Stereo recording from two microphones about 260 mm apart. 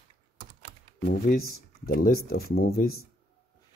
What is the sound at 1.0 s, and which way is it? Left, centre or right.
Speech, left.